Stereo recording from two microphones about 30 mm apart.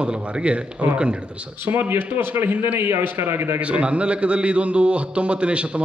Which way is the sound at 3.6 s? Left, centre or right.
Right.